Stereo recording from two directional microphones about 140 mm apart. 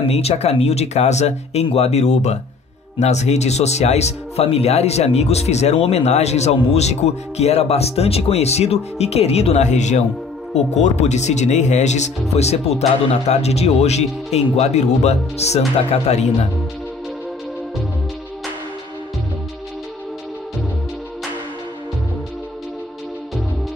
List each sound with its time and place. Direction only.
0.1 s speech: 50° left (ahead or behind)